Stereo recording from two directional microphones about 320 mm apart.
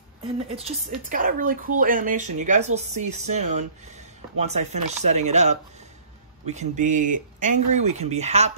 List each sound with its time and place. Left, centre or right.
0.6 s speech: right